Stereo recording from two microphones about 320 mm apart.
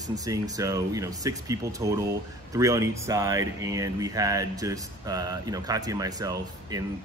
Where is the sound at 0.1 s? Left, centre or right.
Centre.